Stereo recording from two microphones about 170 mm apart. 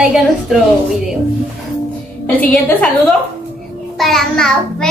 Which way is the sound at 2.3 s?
10° left (ahead or behind).